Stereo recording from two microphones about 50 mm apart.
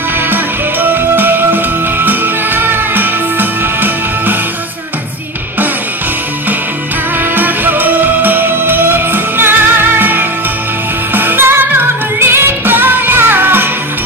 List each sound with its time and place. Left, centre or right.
0.3 s music: right
7.3 s music: right